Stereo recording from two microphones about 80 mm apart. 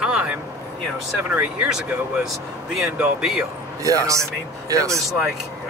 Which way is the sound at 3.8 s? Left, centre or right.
Right.